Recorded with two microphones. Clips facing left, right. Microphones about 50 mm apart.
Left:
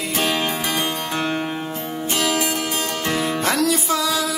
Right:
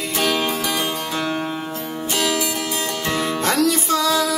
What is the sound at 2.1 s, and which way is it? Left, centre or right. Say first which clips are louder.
Music: even; left.